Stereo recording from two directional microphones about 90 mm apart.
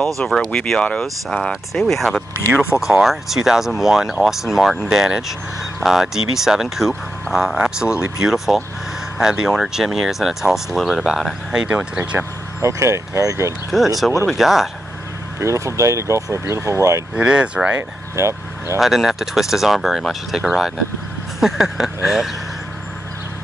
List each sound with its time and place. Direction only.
0.3 s speech: 10° left (ahead or behind); by 12.3 s 15° right (ahead or behind)
12.6 s speech: 35° right (ahead or behind)
13.7 s speech: centre (ahead or behind)
15.4 s speech: 35° right (ahead or behind)
17.1 s speech: 10° right (ahead or behind)
17.7 s speech: 30° right (ahead or behind)
18.8 s speech: centre (ahead or behind)